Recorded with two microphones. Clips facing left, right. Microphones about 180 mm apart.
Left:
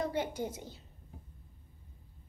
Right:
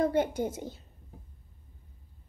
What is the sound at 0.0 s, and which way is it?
Speech, 50° right (ahead or behind).